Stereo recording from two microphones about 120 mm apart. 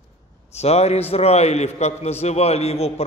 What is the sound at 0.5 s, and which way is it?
A man's voice, 60° left (ahead or behind).